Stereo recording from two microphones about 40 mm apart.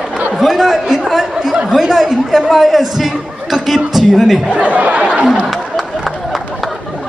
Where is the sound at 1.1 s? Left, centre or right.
Centre.